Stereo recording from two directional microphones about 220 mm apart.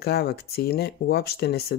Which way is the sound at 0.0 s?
45° left (ahead or behind).